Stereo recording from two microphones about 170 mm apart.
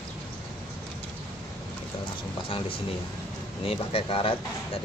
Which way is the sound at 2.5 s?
30° left (ahead or behind).